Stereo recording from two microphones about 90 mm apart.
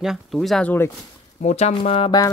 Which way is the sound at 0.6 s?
20° left (ahead or behind).